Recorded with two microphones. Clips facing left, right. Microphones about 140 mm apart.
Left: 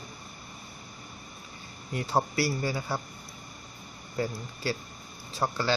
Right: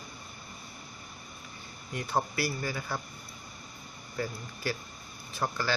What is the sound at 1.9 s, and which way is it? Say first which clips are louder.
Speech: left 3 dB; 30° left (ahead or behind).